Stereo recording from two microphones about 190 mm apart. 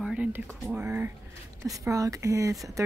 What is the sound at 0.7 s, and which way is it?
Speech, 10° right (ahead or behind).